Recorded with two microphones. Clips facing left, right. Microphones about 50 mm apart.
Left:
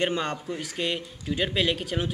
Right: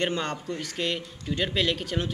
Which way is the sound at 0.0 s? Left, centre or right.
Centre.